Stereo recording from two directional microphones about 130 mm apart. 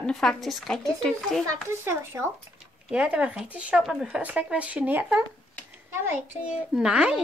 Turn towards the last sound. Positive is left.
turn(degrees=-5)  # may be behind; listen again after turning